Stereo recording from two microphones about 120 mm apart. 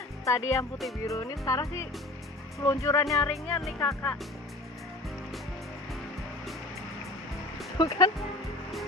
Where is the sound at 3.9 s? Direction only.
20° left (ahead or behind).